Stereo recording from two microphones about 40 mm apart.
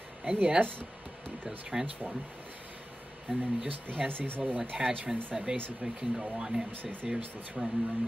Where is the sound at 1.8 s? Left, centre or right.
Centre.